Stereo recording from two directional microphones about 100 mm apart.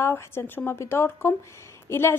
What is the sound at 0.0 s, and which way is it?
Speech, 25° left (ahead or behind).